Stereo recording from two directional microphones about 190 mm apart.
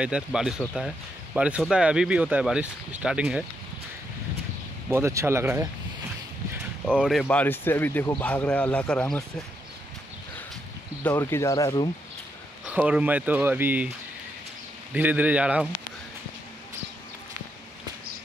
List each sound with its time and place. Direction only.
0.0 s speech: 5° right (ahead or behind)
4.8 s speech: 15° right (ahead or behind)
7.0 s speech: centre (ahead or behind)
11.1 s speech: 15° left (ahead or behind)
12.6 s speech: 5° right (ahead or behind)
15.0 s speech: 10° right (ahead or behind)